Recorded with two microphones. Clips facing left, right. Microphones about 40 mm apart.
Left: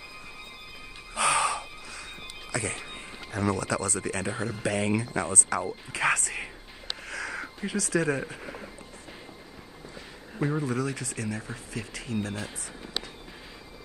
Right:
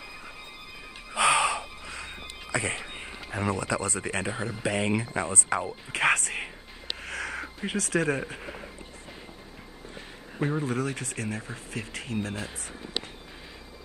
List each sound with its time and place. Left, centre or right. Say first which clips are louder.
1.1 s music: right 2 dB; centre
1.9 s a sound: right 2 dB; right
3.3 s speech: left 1 dB; right
4.3 s speech: even; centre
5.0 s speech: even; right
5.9 s music: right 3 dB; right
7.0 s wheeze: right 1 dB; right
7.6 s speech: even; right
8.4 s a sound: even; centre
10.6 s speech: even; right